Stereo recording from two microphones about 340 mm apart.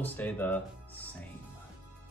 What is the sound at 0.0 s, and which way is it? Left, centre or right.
Speech, centre.